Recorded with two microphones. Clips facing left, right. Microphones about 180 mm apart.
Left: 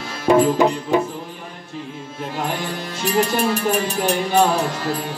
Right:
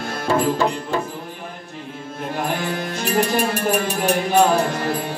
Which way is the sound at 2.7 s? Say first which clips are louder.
Even; 55° right (ahead or behind).